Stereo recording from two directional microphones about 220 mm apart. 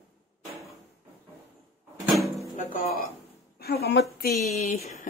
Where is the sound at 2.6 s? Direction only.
35° left (ahead or behind).